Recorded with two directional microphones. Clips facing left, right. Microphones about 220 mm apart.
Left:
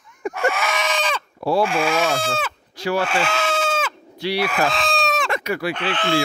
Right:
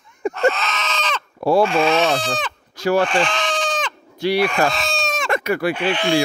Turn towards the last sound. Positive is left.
turn(degrees=-15)  # may be behind; listen again after turning